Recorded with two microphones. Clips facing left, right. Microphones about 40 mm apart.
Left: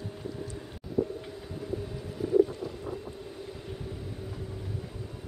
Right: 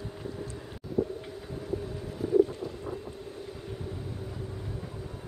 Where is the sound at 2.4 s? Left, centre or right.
Centre.